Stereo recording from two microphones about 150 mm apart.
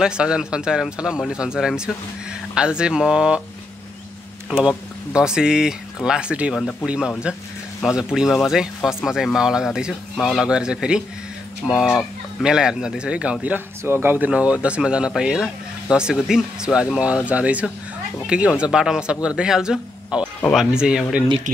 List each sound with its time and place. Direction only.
0.0 s speech: 5° right (ahead or behind)
4.5 s speech: 5° right (ahead or behind)